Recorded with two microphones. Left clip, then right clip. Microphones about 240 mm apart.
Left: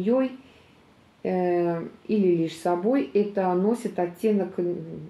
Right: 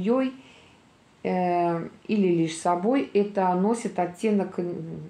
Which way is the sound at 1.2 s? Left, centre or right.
Right.